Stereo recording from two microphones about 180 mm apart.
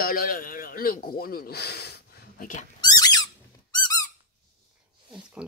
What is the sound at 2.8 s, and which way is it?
Squeak, 20° left (ahead or behind).